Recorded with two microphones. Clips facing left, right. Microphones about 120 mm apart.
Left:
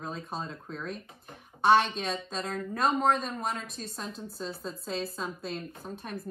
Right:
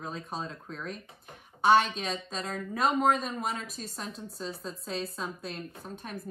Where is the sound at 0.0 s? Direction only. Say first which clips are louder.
Even; centre (ahead or behind).